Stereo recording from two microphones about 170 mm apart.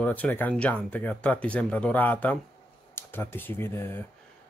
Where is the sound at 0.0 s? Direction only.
10° left (ahead or behind).